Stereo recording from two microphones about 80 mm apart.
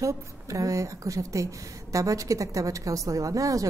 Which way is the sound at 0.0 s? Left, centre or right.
Right.